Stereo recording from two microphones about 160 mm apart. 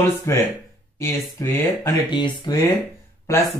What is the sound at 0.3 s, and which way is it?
Speech, 20° left (ahead or behind).